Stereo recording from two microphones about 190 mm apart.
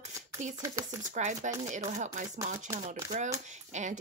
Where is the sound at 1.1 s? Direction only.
40° right (ahead or behind).